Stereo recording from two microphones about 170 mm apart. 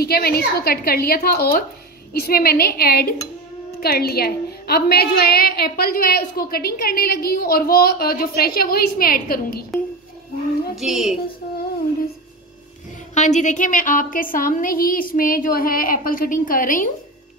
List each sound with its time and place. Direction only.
0.0 s a woman's voice: 65° left (ahead or behind)
10.8 s a woman's voice: centre (ahead or behind)
13.1 s a woman's voice: 45° left (ahead or behind)